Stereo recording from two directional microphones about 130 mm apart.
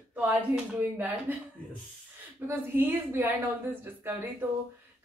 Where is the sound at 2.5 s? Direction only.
15° right (ahead or behind).